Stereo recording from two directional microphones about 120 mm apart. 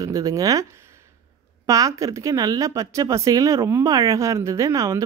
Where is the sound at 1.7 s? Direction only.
25° right (ahead or behind).